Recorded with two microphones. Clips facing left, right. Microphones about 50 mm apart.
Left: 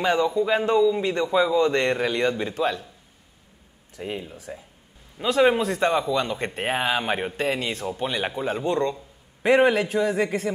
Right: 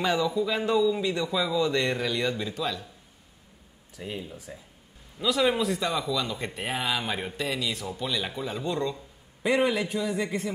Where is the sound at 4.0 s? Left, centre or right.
Left.